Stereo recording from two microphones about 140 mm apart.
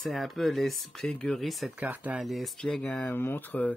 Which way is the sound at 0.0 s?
Centre (ahead or behind).